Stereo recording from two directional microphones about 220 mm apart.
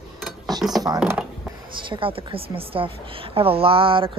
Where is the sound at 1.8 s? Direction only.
25° right (ahead or behind).